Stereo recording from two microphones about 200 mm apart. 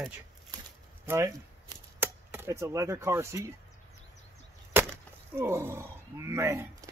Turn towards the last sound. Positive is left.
turn(degrees=-15)  # may be behind; listen again after turning